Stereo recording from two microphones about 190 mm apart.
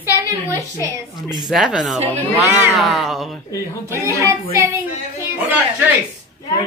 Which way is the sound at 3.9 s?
15° right (ahead or behind).